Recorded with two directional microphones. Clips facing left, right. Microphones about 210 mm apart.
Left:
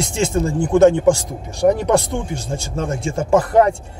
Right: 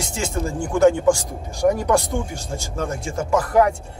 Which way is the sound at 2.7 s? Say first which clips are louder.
Left 3 dB; 25° left (ahead or behind).